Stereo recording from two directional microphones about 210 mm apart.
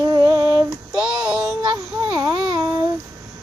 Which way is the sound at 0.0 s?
15° right (ahead or behind).